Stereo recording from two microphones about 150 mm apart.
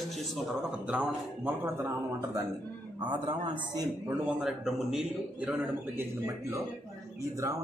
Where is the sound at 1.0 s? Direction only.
15° right (ahead or behind).